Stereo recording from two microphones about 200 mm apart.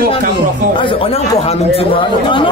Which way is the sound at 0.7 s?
25° left (ahead or behind).